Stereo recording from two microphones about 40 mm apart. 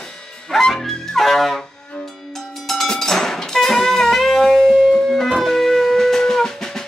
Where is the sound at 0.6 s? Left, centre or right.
Centre.